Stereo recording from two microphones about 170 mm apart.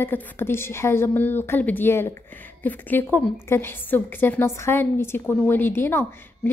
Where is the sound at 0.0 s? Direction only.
10° left (ahead or behind).